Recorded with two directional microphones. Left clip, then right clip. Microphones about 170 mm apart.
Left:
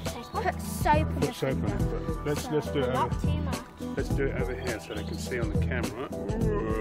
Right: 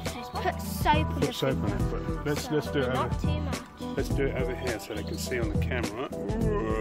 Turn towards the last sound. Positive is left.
turn(degrees=-30)  # may be behind; listen again after turning